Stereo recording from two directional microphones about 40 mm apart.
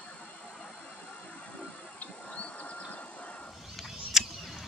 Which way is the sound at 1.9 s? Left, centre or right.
Left.